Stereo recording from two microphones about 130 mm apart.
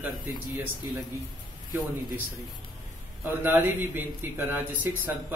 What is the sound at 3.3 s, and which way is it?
Speech, 15° right (ahead or behind).